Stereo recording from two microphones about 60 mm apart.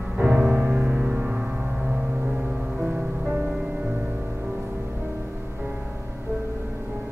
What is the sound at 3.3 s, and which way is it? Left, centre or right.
Music, centre.